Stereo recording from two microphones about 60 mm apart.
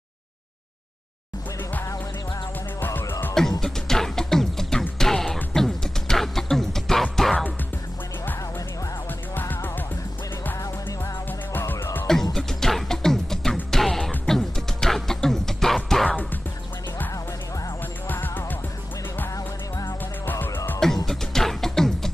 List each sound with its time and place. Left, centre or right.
2.8 s music: left
3.6 s music: centre
9.3 s music: left
11.5 s music: left
12.1 s music: centre
18.0 s music: left
20.2 s music: left
20.8 s music: centre